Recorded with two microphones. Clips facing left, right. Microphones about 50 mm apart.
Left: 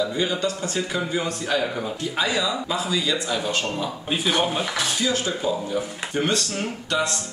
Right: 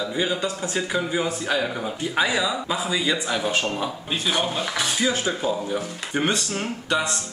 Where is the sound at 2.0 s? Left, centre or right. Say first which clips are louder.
Right 3 dB; centre.